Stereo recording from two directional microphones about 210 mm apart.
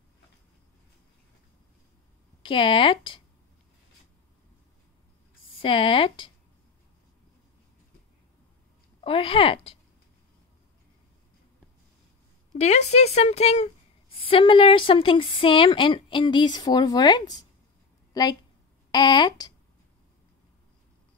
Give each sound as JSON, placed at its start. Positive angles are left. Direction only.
{"t": 2.4, "sound": "a woman's voice", "side_deg": 25}
{"t": 5.6, "sound": "a woman's voice", "side_deg": 25}
{"t": 9.0, "sound": "a woman's voice", "side_deg": 25}
{"t": 12.5, "sound": "a woman's voice", "side_deg": 30}